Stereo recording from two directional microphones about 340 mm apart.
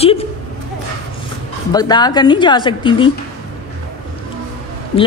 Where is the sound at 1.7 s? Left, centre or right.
Centre.